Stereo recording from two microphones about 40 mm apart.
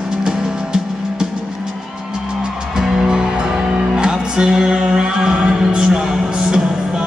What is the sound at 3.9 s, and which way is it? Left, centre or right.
Music, centre.